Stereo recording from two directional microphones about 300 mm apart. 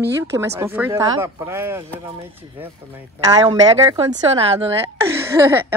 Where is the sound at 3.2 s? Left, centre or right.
Centre.